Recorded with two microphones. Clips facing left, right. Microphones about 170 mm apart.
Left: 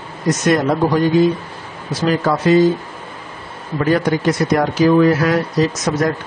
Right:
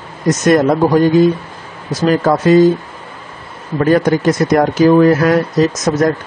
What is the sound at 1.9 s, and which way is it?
Speech, 45° right (ahead or behind).